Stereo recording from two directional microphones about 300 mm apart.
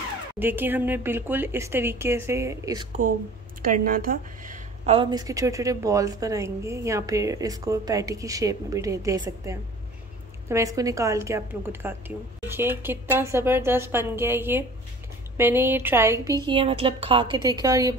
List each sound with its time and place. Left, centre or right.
0.4 s a woman's voice: centre
3.6 s a woman's voice: right; by 17.9 s centre